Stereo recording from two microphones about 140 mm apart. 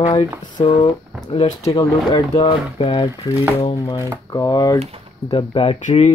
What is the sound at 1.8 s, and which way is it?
Speech, 25° left (ahead or behind).